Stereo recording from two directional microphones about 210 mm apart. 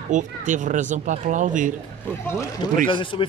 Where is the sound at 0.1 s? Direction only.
35° right (ahead or behind).